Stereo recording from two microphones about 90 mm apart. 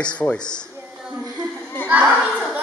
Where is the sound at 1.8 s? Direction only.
15° right (ahead or behind).